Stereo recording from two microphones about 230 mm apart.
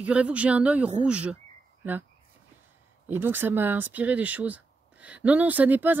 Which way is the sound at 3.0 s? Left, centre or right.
Centre.